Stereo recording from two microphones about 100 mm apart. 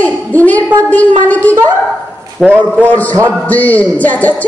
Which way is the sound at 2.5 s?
15° right (ahead or behind).